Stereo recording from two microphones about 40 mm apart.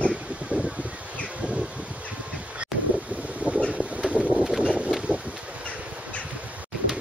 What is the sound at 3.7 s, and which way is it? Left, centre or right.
Vehicle, right.